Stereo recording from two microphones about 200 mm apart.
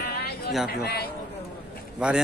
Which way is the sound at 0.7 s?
50° left (ahead or behind).